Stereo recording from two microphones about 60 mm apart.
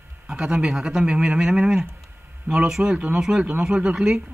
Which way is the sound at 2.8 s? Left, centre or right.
Centre.